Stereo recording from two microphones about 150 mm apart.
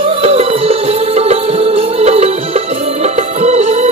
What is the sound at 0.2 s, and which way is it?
Music, 40° right (ahead or behind).